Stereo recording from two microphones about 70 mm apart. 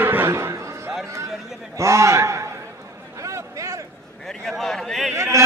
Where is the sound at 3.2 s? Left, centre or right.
Right.